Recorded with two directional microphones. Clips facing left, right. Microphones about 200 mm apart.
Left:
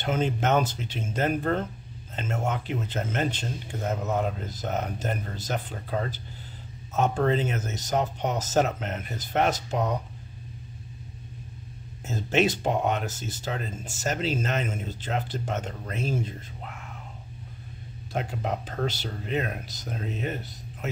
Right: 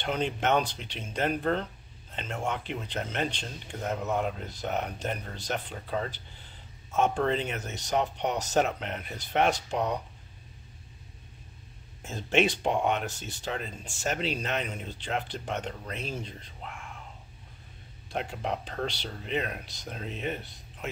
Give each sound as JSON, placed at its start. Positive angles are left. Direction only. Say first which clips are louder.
{"t": 0.0, "sound": "speech", "louder": "left 3 dB", "side_deg": 5}
{"t": 0.8, "sound": "speech", "louder": "left 6 dB", "side_deg": 45}
{"t": 1.1, "sound": "speech", "louder": "left 2 dB", "side_deg": 5}
{"t": 12.0, "sound": "speech", "louder": "left 2 dB", "side_deg": 0}
{"t": 13.7, "sound": "speech", "louder": "left 5 dB", "side_deg": 40}
{"t": 14.0, "sound": "speech", "louder": "left 3 dB", "side_deg": 0}
{"t": 18.1, "sound": "speech", "louder": "left 2 dB", "side_deg": 5}